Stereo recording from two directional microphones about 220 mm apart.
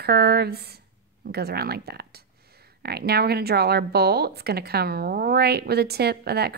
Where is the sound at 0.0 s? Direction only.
45° right (ahead or behind).